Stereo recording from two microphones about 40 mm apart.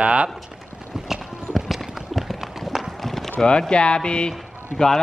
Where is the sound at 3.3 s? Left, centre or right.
Centre.